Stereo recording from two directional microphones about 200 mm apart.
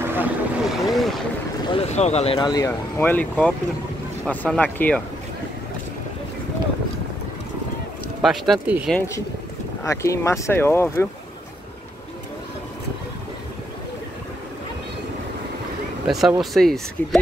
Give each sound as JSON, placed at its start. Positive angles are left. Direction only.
{"t": 0.0, "sound": "vehicle", "side_deg": -10}
{"t": 0.9, "sound": "boat", "side_deg": 0}
{"t": 1.7, "sound": "speech", "side_deg": 30}
{"t": 8.2, "sound": "speech", "side_deg": 0}
{"t": 8.9, "sound": "speech", "side_deg": 15}
{"t": 16.1, "sound": "speech", "side_deg": 0}